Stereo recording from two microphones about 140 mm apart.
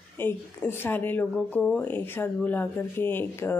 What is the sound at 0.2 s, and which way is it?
Speech, 15° left (ahead or behind).